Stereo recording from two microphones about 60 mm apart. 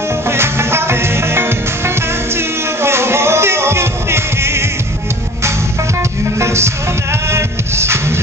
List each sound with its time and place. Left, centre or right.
0.3 s music: right
6.3 s music: right